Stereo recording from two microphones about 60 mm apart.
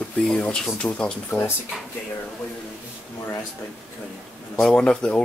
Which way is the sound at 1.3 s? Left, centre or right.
Left.